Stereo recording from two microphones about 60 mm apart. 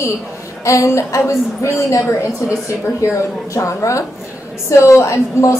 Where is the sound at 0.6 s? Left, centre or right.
Left.